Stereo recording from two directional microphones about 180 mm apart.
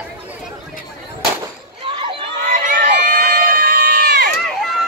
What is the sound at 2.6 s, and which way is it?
Crowd, 50° right (ahead or behind).